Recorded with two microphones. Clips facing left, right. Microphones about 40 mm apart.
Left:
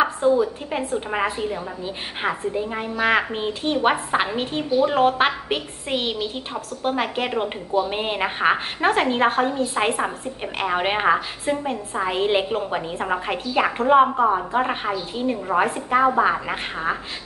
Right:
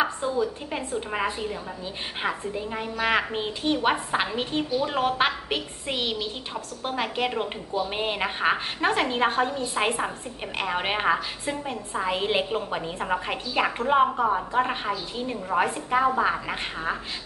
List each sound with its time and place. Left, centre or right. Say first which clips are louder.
0.2 s a woman's voice: left 7 dB; centre